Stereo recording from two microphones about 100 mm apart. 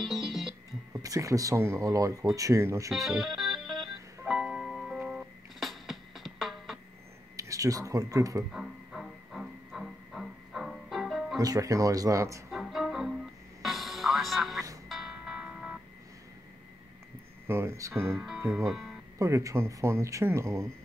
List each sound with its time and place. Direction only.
0.0 s music: centre (ahead or behind)
0.9 s speech: 35° right (ahead or behind)
3.1 s music: centre (ahead or behind)
7.3 s speech: 35° right (ahead or behind)
8.5 s music: 5° right (ahead or behind)
11.3 s speech: 35° right (ahead or behind)
12.4 s music: centre (ahead or behind)
17.5 s speech: 25° right (ahead or behind)
18.0 s speech: centre (ahead or behind)
19.1 s speech: 30° right (ahead or behind)